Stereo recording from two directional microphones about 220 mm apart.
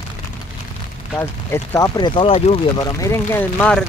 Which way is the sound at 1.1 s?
10° left (ahead or behind).